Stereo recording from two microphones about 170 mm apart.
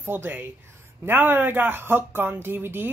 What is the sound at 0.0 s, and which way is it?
Speech, 10° right (ahead or behind).